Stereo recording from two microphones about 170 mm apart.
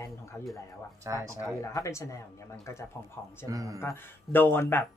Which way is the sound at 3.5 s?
20° right (ahead or behind).